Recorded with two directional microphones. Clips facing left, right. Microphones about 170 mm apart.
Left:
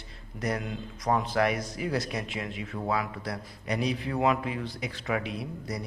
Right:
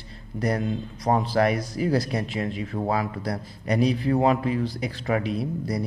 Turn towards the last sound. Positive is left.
turn(degrees=-35)  # may be behind; listen again after turning